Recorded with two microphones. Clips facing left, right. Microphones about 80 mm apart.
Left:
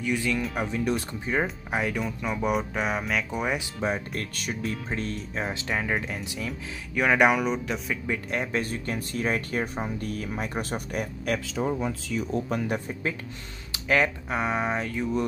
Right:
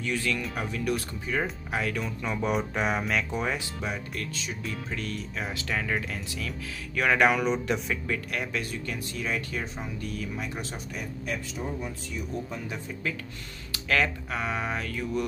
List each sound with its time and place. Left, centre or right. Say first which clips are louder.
0.0 s speech: left 3 dB; centre
3.8 s speech: left 5 dB; left
4.8 s speech: left 3 dB; left; by 8.0 s centre
8.1 s speech: left 5 dB; left
13.7 s speech: left 3 dB; left